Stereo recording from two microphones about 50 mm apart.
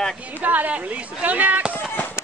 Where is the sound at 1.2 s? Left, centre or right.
Right.